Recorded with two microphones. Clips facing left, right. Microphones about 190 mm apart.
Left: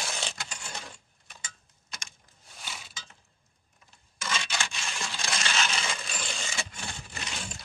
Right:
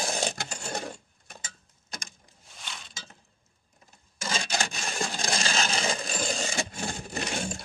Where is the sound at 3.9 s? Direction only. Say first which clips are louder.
Right 1 dB; 35° right (ahead or behind).